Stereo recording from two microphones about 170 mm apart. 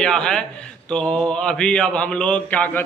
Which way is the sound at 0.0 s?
5° left (ahead or behind).